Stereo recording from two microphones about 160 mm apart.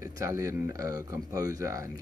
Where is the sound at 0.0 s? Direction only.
20° right (ahead or behind).